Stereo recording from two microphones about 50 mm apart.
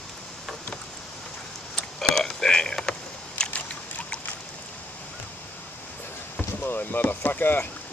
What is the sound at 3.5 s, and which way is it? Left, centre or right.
Boat, left.